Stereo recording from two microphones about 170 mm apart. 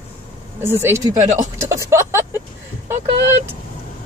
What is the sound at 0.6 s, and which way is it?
Speech, 15° right (ahead or behind).